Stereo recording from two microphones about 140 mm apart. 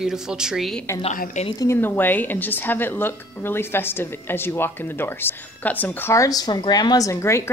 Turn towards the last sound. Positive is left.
turn(degrees=20)  # may be behind; listen again after turning